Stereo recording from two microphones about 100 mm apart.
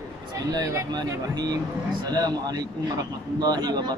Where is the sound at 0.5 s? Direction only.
40° right (ahead or behind).